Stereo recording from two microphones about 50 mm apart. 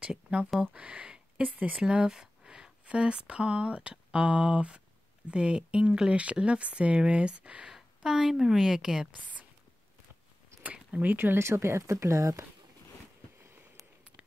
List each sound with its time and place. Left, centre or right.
0.0 s speech: right
1.8 s speech: centre
7.7 s a woman's voice: centre
10.6 s a sound: right
11.3 s speech: right